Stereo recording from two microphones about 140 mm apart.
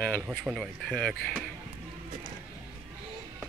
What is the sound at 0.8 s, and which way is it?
Speech, 5° left (ahead or behind).